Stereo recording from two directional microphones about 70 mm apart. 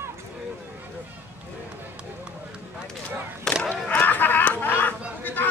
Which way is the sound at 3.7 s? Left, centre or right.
Left.